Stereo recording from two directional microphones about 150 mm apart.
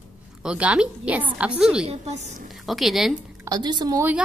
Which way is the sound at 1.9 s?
50° right (ahead or behind).